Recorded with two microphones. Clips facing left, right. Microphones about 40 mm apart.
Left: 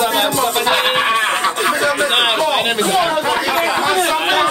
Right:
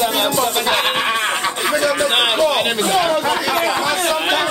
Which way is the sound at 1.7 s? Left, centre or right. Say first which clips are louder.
Left 1 dB; left.